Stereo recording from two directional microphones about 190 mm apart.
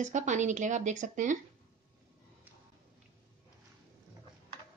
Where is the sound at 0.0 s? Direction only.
40° right (ahead or behind).